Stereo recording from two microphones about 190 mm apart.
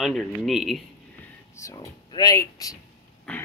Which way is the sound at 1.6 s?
15° left (ahead or behind).